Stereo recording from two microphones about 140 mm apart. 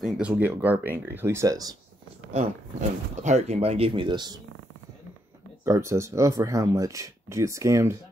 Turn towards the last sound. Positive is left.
turn(degrees=-20)  # may be behind; listen again after turning